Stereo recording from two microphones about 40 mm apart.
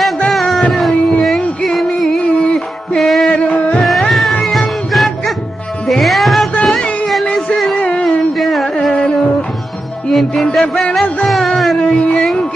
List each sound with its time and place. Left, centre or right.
0.3 s music: centre
2.3 s music: left
3.0 s music: centre
3.3 s music: left
4.1 s music: centre
6.6 s music: centre
8.4 s carnatic music: centre
10.6 s music: centre
11.2 s a sound: centre
11.8 s a sound: left